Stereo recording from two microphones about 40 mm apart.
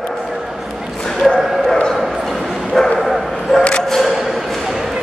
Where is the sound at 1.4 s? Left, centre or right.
Centre.